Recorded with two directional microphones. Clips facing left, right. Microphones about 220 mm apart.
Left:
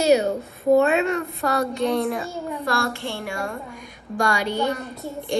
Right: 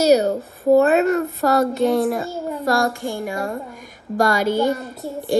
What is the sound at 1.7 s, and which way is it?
A woman's voice, centre (ahead or behind).